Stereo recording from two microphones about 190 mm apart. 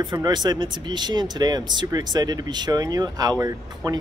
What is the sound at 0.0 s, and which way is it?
Speech, 20° right (ahead or behind).